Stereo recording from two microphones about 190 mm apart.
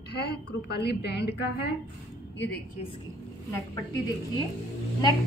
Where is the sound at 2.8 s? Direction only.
35° left (ahead or behind).